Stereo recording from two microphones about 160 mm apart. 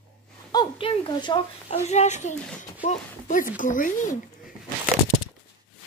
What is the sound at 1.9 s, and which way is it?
A child's voice, 45° left (ahead or behind).